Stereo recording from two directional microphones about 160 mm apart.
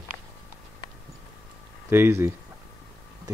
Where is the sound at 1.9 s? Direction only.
15° right (ahead or behind).